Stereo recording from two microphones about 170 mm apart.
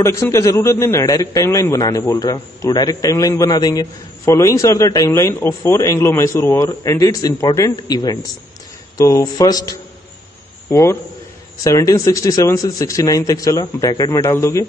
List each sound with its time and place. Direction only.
0.0 s a man's voice: 15° left (ahead or behind)